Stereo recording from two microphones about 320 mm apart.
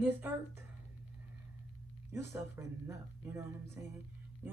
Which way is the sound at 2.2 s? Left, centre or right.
Left.